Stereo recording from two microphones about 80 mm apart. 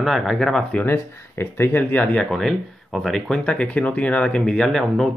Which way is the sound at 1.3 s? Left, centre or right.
Left.